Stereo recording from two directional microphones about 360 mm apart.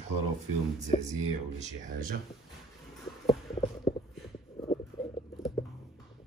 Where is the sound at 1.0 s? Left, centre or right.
Centre.